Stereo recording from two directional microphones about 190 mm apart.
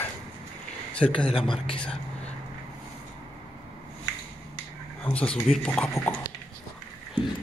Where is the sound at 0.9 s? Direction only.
30° left (ahead or behind).